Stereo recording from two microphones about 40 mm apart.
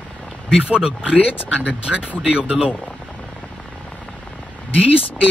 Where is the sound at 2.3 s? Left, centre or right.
Right.